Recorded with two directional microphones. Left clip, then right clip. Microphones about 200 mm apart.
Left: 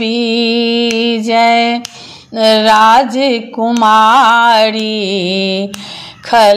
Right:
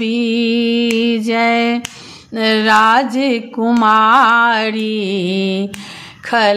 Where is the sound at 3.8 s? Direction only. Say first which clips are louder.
Left 3 dB; 10° right (ahead or behind).